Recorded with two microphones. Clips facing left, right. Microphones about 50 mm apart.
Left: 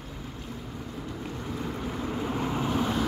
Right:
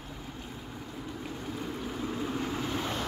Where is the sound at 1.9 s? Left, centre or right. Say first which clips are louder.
Left 2 dB; left; by 3.1 s centre.